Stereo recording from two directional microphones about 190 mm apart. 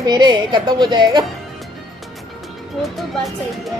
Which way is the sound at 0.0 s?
20° right (ahead or behind).